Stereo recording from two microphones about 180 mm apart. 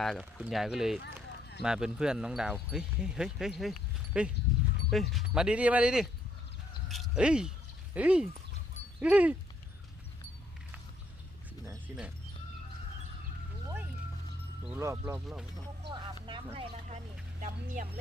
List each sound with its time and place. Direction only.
0.0 s speech: centre (ahead or behind)
6.9 s a sound: 5° right (ahead or behind)
9.0 s speech: 5° right (ahead or behind)
14.7 s speech: 15° right (ahead or behind)
16.5 s speech: 40° right (ahead or behind)